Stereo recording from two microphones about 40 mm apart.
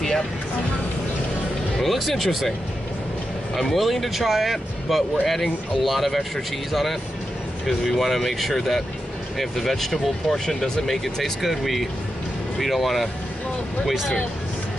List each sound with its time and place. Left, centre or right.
1.8 s speech: centre
3.5 s speech: centre
11.4 s speech: centre